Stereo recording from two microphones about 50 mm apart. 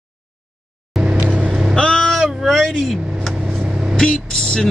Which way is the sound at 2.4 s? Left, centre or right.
Centre.